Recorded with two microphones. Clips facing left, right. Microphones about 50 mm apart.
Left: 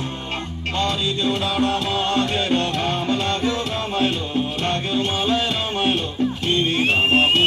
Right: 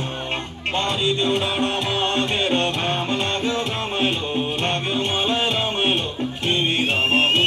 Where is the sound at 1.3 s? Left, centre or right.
Right.